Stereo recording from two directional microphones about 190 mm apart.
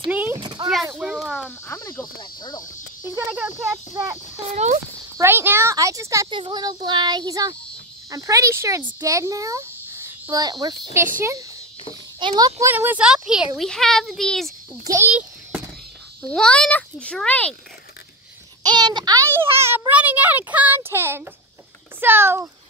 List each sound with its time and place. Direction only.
0.1 s a sound: 10° right (ahead or behind)
0.4 s a sound: 25° right (ahead or behind)
0.8 s speech: 5° right (ahead or behind)
1.7 s speech: 15° left (ahead or behind)
3.1 s a child's voice: 10° right (ahead or behind)
5.1 s a child's voice: 10° right (ahead or behind)
14.9 s a sound: 10° right (ahead or behind)
16.2 s speech: 5° left (ahead or behind)
18.6 s a child's voice: 20° right (ahead or behind)